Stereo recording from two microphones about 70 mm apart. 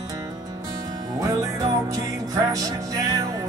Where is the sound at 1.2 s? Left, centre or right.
Right.